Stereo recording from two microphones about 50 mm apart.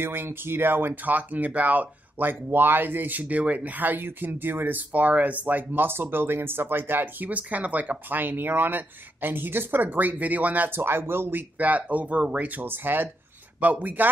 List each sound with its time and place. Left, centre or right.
0.0 s speech: right
1.0 s speech: right
7.2 s speech: right
10.8 s speech: right
11.5 s speech: right
12.6 s speech: right
13.6 s speech: right